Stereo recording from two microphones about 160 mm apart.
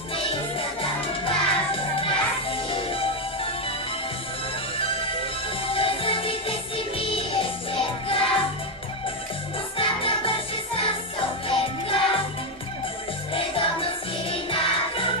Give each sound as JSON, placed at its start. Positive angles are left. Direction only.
{"t": 0.1, "sound": "music", "side_deg": 35}
{"t": 4.7, "sound": "music", "side_deg": 35}
{"t": 9.8, "sound": "music", "side_deg": 35}
{"t": 13.3, "sound": "music", "side_deg": 35}